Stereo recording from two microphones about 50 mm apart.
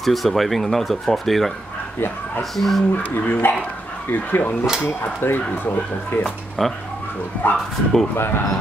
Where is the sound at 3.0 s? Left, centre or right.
Left.